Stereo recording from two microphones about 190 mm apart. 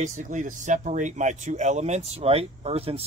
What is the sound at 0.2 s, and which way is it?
Speech, 40° right (ahead or behind).